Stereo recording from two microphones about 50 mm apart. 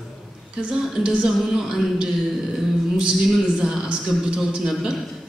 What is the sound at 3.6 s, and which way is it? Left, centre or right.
Speech, centre.